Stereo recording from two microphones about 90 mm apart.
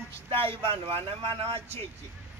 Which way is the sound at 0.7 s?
90° right.